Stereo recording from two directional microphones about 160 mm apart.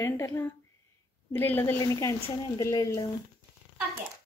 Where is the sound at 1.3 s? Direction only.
15° left (ahead or behind).